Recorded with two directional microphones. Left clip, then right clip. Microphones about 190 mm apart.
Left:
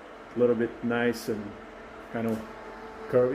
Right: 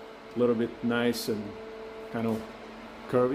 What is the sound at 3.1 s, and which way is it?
Speech, 20° right (ahead or behind).